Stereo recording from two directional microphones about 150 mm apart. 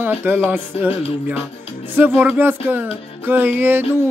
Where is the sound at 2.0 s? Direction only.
10° right (ahead or behind).